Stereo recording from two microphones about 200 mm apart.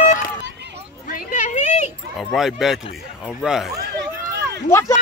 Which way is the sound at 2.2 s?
Centre (ahead or behind).